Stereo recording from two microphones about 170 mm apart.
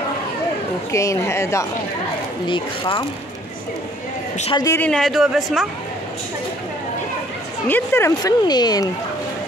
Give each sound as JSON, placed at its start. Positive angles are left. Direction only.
{"t": 0.9, "sound": "speech", "side_deg": 15}
{"t": 2.4, "sound": "speech", "side_deg": 30}
{"t": 4.6, "sound": "speech", "side_deg": 20}
{"t": 4.8, "sound": "speech", "side_deg": 5}
{"t": 7.6, "sound": "speech", "side_deg": 15}